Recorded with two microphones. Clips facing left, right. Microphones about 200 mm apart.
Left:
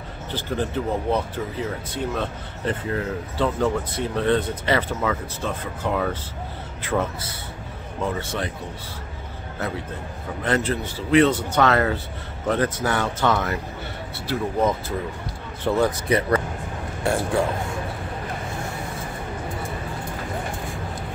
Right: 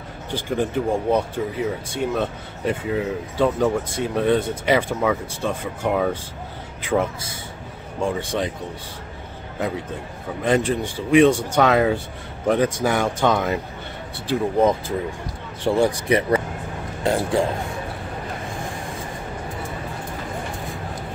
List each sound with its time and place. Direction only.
0.3 s speech: 15° right (ahead or behind)
10.4 s speech: 15° right (ahead or behind)
14.2 s speech: 25° right (ahead or behind)
15.6 s speech: 15° right (ahead or behind)